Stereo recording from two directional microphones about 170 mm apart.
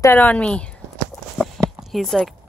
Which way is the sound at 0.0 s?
10° left (ahead or behind).